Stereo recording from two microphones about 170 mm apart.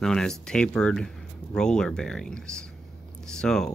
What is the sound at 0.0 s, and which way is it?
Speech, 5° left (ahead or behind).